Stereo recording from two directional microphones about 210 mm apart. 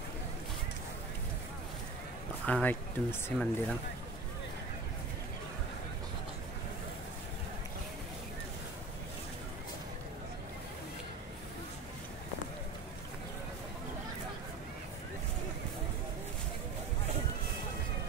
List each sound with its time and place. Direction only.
2.4 s speech: 5° left (ahead or behind)